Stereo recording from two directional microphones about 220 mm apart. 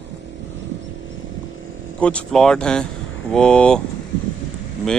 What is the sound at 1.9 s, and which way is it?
Speech, 5° left (ahead or behind).